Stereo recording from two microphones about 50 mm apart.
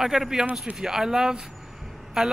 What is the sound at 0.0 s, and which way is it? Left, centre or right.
Speech, centre.